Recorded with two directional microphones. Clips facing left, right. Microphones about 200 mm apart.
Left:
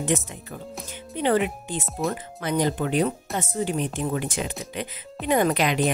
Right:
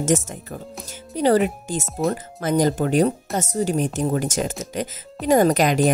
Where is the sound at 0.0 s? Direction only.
45° right (ahead or behind).